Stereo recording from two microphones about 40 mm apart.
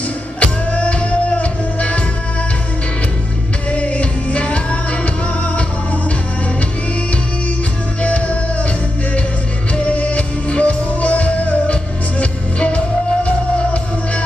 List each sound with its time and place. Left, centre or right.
0.4 s music: left
3.7 s music: left
8.0 s music: left
9.8 s music: left